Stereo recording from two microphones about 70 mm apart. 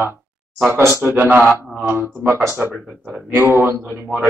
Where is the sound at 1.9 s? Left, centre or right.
Right.